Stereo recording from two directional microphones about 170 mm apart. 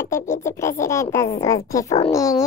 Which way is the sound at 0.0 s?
15° left (ahead or behind).